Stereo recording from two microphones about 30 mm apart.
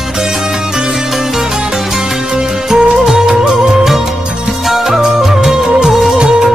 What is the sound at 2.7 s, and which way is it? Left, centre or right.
Music, centre.